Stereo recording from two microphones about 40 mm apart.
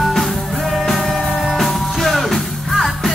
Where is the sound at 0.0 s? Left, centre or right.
Centre.